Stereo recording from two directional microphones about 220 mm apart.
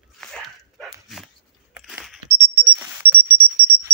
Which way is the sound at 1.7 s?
Centre (ahead or behind).